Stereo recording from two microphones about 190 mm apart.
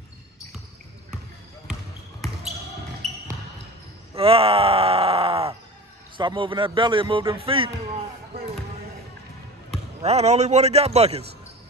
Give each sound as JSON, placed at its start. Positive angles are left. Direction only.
{"t": 3.0, "sound": "basketball bounce", "side_deg": 0}
{"t": 4.1, "sound": "groan", "side_deg": -30}
{"t": 6.1, "sound": "a man's voice", "side_deg": -25}
{"t": 10.0, "sound": "a man's voice", "side_deg": -35}